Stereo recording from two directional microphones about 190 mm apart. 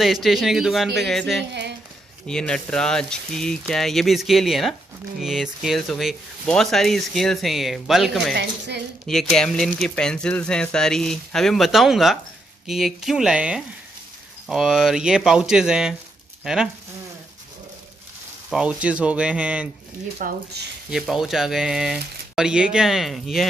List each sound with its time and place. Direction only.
0.0 s speech: centre (ahead or behind)
1.5 s a sound: 65° right (ahead or behind)
2.2 s speech: 5° left (ahead or behind)
8.4 s a woman's voice: 65° right (ahead or behind)
9.0 s speech: centre (ahead or behind)
18.5 s speech: 5° right (ahead or behind)
20.2 s speech: 45° right (ahead or behind)
20.9 s speech: centre (ahead or behind)